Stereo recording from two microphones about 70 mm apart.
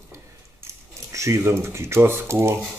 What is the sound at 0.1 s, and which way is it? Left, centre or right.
Keys jangling, right.